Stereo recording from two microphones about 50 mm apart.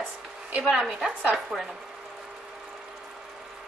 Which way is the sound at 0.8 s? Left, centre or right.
Centre.